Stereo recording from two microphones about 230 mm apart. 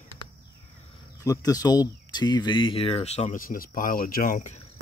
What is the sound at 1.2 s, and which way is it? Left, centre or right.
Speech, centre.